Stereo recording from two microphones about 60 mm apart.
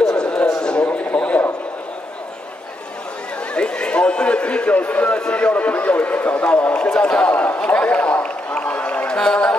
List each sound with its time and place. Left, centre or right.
0.1 s a sound: centre
0.8 s radio: left
3.5 s run: centre